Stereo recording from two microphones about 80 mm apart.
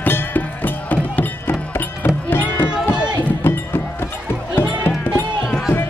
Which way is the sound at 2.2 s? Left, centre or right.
Left.